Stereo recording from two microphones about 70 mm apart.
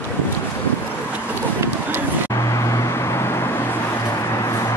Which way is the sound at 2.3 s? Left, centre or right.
Left.